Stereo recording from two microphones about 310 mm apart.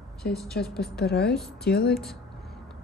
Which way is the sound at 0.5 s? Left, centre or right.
Left.